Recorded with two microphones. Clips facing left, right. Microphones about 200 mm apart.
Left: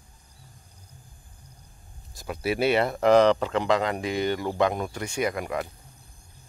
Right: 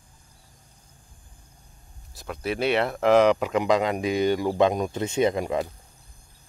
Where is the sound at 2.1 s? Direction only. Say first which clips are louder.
Left 2 dB; 5° left (ahead or behind); by 5.7 s 20° right (ahead or behind).